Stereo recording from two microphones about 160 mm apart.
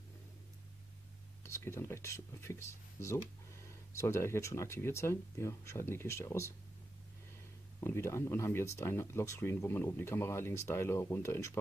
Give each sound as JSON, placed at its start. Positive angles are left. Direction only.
{"t": 1.4, "sound": "speech", "side_deg": 15}
{"t": 7.8, "sound": "speech", "side_deg": 15}